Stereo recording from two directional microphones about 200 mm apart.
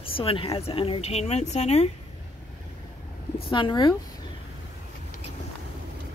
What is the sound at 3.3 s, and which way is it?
Speech, 25° left (ahead or behind).